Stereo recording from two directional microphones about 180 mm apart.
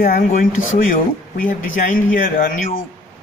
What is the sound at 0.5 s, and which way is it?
Speech, 90° left.